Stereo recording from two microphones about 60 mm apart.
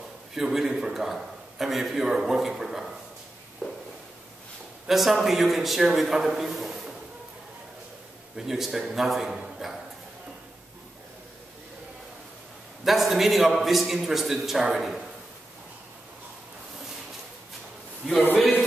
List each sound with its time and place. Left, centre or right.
0.3 s a man's voice: centre
3.6 s walk: centre
4.8 s a man's voice: centre
8.4 s a man's voice: centre
12.8 s a man's voice: centre